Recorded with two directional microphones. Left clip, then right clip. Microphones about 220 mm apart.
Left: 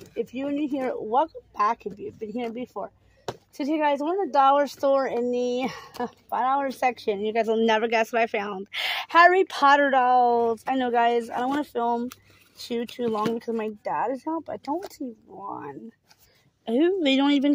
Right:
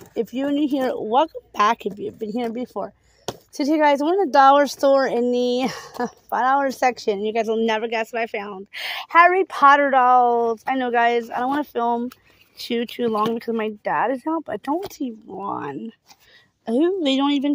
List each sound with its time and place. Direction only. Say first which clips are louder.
0.1 s speech: right 6 dB; 30° right (ahead or behind)
16.6 s speech: right 2 dB; 15° right (ahead or behind)